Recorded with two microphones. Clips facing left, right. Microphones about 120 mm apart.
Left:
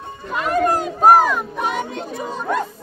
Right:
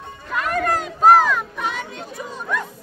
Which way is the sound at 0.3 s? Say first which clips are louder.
Left 3 dB; 25° left (ahead or behind).